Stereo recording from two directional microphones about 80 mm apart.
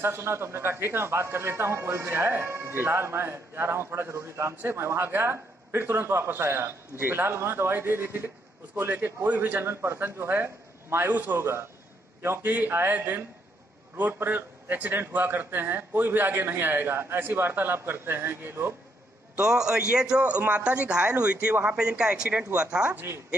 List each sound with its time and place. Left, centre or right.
0.0 s a man's voice: right
19.3 s a man's voice: centre
22.9 s speech: right